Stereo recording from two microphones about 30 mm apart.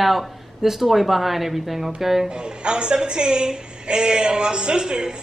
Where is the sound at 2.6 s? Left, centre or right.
Right.